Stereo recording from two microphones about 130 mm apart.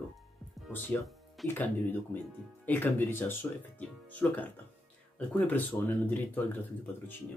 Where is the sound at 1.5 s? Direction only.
15° left (ahead or behind).